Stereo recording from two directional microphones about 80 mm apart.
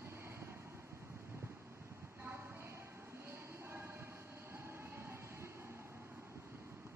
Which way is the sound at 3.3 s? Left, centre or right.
Right.